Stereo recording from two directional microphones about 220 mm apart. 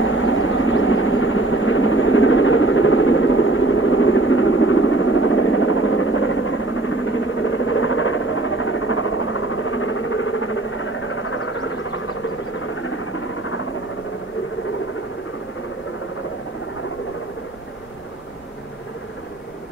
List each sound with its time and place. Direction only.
0.0 s vehicle: 65° left (ahead or behind)